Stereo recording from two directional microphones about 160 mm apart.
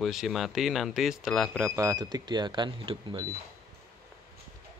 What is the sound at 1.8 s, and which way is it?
Speech, 20° right (ahead or behind).